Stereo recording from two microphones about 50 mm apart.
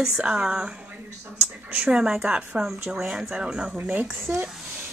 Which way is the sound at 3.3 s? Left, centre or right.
Centre.